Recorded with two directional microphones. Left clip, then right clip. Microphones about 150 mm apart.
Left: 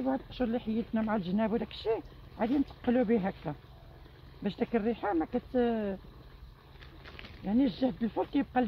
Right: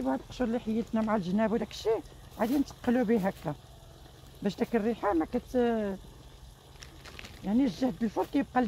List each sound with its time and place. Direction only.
0.0 s speech: 45° right (ahead or behind)
6.8 s fire: 15° right (ahead or behind)
7.4 s speech: 50° right (ahead or behind)